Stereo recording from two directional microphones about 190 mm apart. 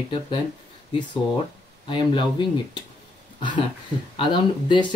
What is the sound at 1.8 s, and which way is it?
Speech, 25° left (ahead or behind).